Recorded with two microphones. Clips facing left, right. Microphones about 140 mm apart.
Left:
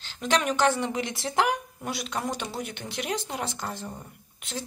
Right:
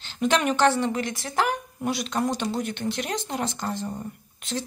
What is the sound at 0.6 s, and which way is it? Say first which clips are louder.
Speech: right 3 dB; 10° left (ahead or behind).